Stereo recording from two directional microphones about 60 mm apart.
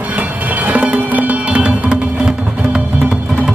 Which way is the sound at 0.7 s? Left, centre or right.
Right.